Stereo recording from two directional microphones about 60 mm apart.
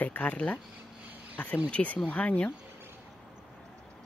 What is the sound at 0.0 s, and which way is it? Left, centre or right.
Speech, left.